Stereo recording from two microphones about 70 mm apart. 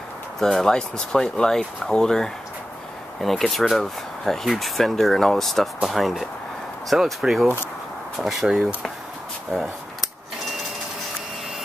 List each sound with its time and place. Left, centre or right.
0.4 s speech: centre